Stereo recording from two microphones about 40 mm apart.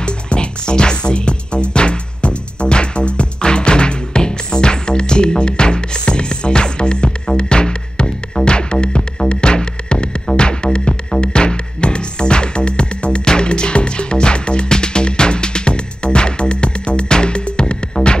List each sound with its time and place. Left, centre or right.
0.0 s music: left